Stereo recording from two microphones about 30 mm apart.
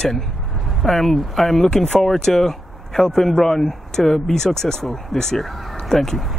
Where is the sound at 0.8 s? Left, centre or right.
Centre.